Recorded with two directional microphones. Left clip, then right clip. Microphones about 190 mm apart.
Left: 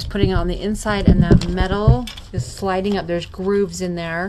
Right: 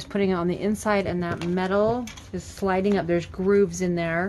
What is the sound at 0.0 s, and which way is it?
Speech, 5° right (ahead or behind).